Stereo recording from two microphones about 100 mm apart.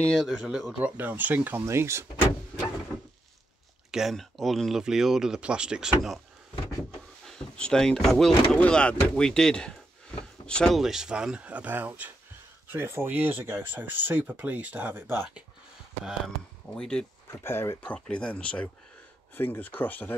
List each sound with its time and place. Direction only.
0.2 s speech: centre (ahead or behind)
0.8 s speech: 20° right (ahead or behind)
3.9 s speech: centre (ahead or behind)
7.2 s speech: 10° left (ahead or behind)
10.8 s speech: 5° right (ahead or behind); by 15.2 s 20° right (ahead or behind)
16.7 s speech: 10° left (ahead or behind)
17.3 s speech: 25° left (ahead or behind)
17.9 s speech: 10° left (ahead or behind)